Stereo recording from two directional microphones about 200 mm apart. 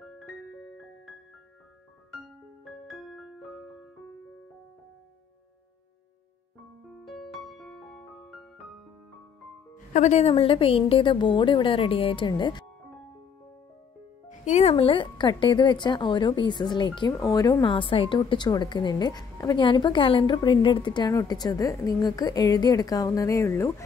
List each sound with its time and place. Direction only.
2.1 s music: centre (ahead or behind)
6.9 s music: centre (ahead or behind)
9.9 s speech: 35° left (ahead or behind)
14.4 s speech: 35° left (ahead or behind); by 23.7 s 15° left (ahead or behind)